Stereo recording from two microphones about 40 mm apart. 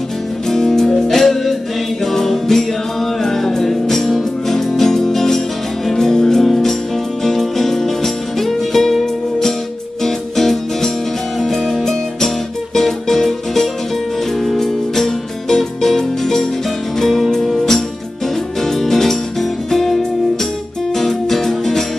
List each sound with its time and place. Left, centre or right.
0.5 s music: centre